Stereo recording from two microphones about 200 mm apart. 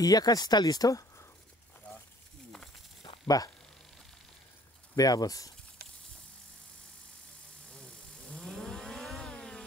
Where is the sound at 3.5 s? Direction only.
5° left (ahead or behind).